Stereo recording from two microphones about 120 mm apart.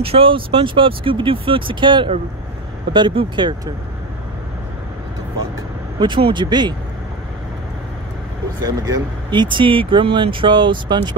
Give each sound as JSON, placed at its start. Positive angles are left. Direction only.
{"t": 0.0, "sound": "speech", "side_deg": -50}
{"t": 5.9, "sound": "speech", "side_deg": -40}
{"t": 8.6, "sound": "speech", "side_deg": -35}